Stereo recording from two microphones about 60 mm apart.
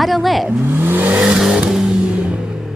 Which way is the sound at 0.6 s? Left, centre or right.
Right.